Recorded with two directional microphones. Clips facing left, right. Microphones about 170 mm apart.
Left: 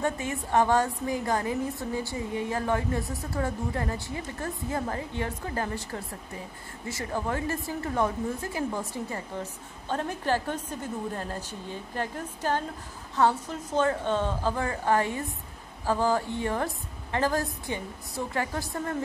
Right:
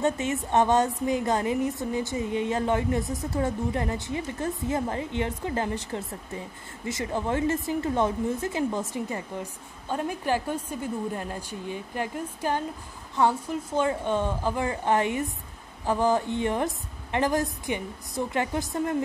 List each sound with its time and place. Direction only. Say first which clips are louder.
0.0 s a woman's voice: right 4 dB; 20° right (ahead or behind)